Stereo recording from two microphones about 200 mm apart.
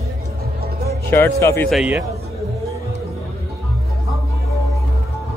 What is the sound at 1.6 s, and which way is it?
Speech, 5° right (ahead or behind).